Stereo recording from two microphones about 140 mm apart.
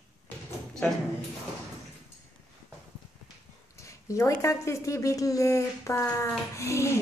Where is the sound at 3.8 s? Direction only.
20° left (ahead or behind).